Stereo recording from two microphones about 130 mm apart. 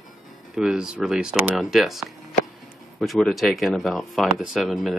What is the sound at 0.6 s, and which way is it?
Speech, 5° right (ahead or behind).